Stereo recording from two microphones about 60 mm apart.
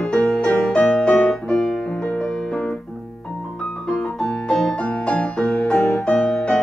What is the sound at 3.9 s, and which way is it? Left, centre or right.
Piano, centre.